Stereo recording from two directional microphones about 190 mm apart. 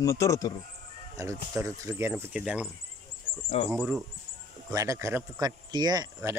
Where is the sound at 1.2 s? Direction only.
15° right (ahead or behind).